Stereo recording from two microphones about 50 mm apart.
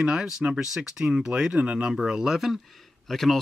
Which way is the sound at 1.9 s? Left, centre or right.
Centre.